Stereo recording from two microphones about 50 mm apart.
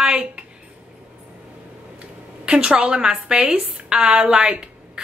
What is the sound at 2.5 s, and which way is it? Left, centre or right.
A woman's voice, centre.